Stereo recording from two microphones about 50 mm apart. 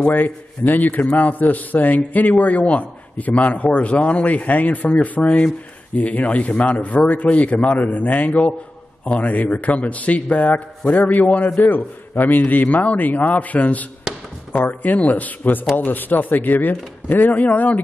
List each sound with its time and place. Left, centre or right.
0.1 s a man's voice: left